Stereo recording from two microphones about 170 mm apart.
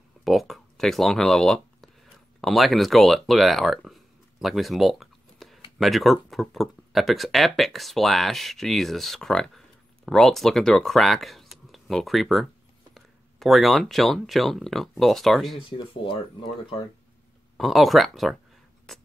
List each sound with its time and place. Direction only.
0.2 s speech: centre (ahead or behind)
15.9 s speech: 30° left (ahead or behind)
17.6 s speech: centre (ahead or behind)
18.9 s a sound: centre (ahead or behind)